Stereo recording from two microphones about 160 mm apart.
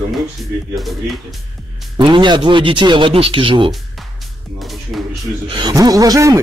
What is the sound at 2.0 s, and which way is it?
Speech, 30° right (ahead or behind).